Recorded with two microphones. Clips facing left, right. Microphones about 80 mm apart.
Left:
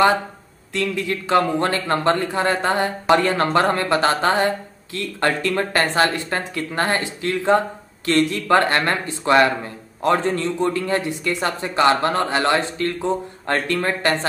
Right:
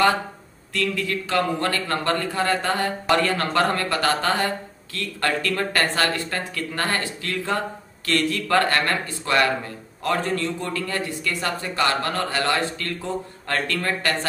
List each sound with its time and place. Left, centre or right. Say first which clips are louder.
0.7 s speech: left 2 dB; left